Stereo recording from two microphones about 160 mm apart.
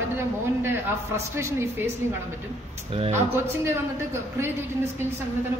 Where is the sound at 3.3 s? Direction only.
15° right (ahead or behind).